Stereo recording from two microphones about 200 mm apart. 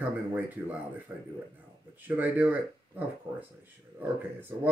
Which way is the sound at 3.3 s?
20° right (ahead or behind).